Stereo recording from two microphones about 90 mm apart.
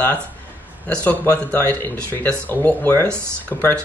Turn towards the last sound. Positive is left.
turn(degrees=15)  # may be behind; listen again after turning